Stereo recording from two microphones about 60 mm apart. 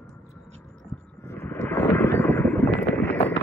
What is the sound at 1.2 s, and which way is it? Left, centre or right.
Vehicle, left.